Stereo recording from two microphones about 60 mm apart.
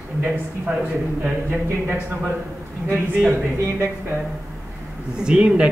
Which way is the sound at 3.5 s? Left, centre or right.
Right.